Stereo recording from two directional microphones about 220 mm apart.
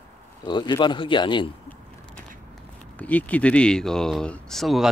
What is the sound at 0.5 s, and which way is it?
Speech, 20° left (ahead or behind).